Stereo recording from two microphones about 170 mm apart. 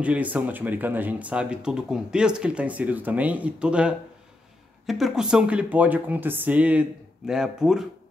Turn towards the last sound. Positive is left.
turn(degrees=-5)  # may be behind; listen again after turning